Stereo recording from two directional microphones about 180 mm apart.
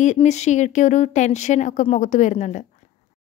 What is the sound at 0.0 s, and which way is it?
Speech, 40° left (ahead or behind).